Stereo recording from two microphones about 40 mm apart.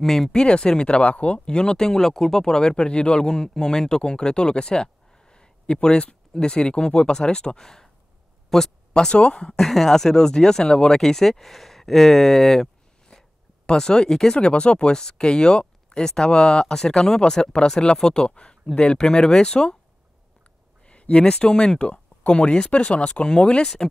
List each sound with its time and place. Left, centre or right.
0.0 s speech: centre
0.3 s speech: left
1.4 s speech: left; by 8.7 s centre
8.9 s speech: left
9.6 s speech: centre
13.1 s a sound: centre
13.7 s speech: centre
20.8 s speech: left